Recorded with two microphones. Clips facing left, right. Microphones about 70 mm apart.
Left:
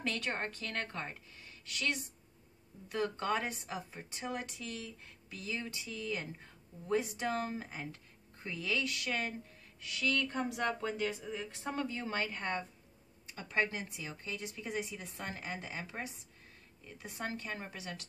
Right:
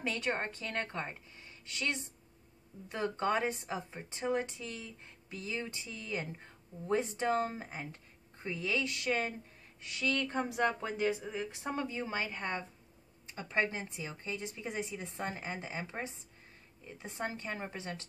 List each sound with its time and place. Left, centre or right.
0.0 s speech: centre
13.3 s speech: right